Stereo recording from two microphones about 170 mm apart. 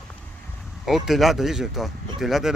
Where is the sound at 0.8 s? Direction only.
Centre (ahead or behind).